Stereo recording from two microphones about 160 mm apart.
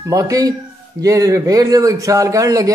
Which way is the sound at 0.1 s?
20° right (ahead or behind).